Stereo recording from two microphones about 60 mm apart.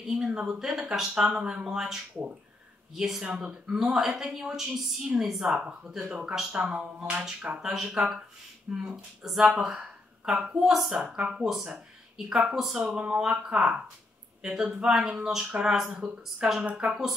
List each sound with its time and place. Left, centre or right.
0.3 s speech: centre